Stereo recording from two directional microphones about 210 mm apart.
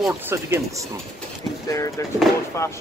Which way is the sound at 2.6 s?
15° left (ahead or behind).